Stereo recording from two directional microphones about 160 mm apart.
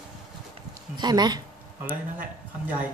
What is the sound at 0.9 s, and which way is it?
Speech, 25° right (ahead or behind).